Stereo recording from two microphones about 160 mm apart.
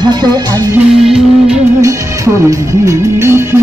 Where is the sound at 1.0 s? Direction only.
5° right (ahead or behind).